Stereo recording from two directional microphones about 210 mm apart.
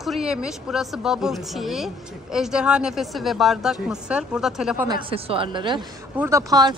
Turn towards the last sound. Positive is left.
turn(degrees=-20)  # may be behind; listen again after turning